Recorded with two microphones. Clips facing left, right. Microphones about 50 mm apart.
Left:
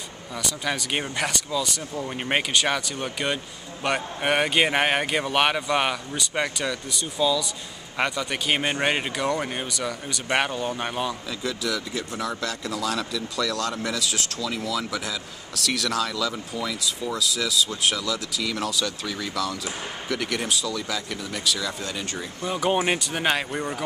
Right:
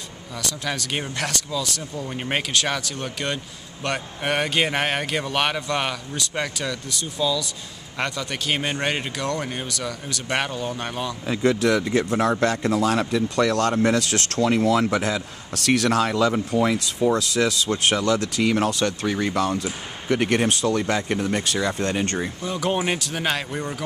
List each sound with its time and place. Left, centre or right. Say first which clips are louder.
0.4 s a man's voice: even; centre
11.4 s speech: right 9 dB; right
18.4 s speech: right 5 dB; right
20.2 s speech: right 6 dB; right
22.4 s a man's voice: left 3 dB; centre